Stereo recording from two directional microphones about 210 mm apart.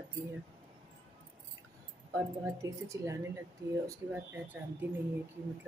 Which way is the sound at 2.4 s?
15° right (ahead or behind).